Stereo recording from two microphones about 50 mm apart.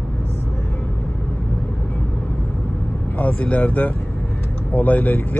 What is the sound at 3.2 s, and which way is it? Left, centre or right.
Speech, left.